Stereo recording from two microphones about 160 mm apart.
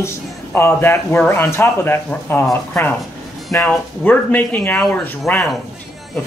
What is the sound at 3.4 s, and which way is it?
Speech, 5° left (ahead or behind).